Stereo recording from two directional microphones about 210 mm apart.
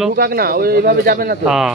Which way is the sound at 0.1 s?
45° right (ahead or behind).